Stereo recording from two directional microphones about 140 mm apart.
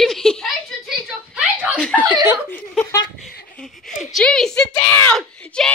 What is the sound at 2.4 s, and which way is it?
Speech, 15° left (ahead or behind).